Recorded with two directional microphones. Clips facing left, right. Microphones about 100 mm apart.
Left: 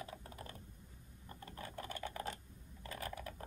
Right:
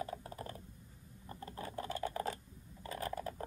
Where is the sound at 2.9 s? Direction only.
40° right (ahead or behind).